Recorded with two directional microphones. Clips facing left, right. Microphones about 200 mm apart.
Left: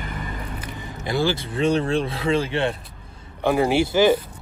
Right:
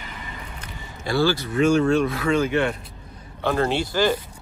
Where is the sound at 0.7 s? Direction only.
20° left (ahead or behind).